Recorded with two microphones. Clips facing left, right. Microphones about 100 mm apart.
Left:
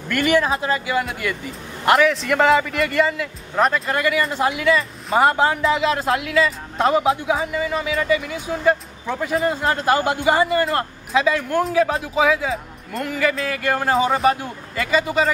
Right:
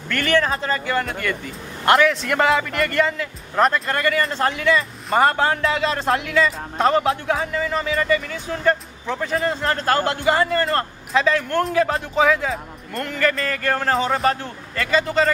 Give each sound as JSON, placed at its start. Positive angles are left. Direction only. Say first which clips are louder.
{"t": 0.1, "sound": "a man's voice", "louder": "left 2 dB", "side_deg": 10}